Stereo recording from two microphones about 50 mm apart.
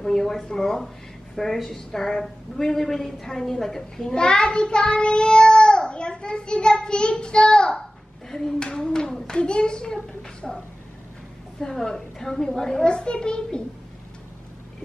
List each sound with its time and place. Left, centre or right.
0.0 s a woman's voice: centre
11.6 s a woman's voice: centre